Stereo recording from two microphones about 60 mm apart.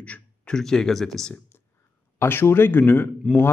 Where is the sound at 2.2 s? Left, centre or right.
Left.